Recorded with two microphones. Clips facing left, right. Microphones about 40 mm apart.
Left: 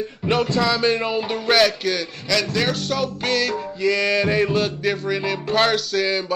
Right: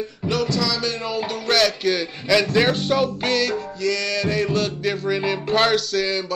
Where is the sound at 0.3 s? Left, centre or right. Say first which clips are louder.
Left 3 dB; left.